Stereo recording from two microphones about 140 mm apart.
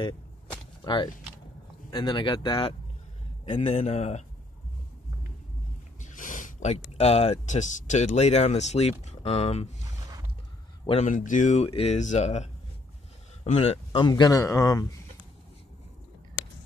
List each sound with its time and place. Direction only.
0.8 s speech: 30° left (ahead or behind)
3.5 s speech: 50° left (ahead or behind)
5.9 s speech: 65° left (ahead or behind); by 9.8 s 50° left (ahead or behind)
10.9 s speech: 60° left (ahead or behind)
14.0 s speech: 30° left (ahead or behind)